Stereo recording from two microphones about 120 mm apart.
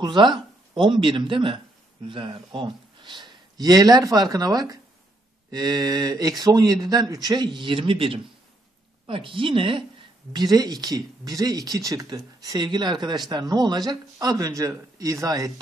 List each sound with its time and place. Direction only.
0.0 s a woman's voice: 40° right (ahead or behind)
10.3 s speech: 35° right (ahead or behind)